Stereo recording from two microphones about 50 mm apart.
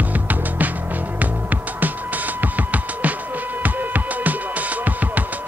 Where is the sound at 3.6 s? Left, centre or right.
Right.